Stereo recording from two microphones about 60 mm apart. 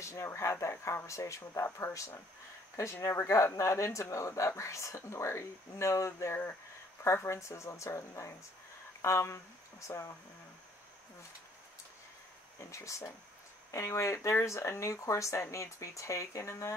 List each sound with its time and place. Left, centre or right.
0.0 s speech: left
12.5 s speech: left